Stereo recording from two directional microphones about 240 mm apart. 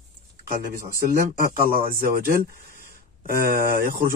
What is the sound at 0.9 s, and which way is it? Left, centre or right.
Speech, right.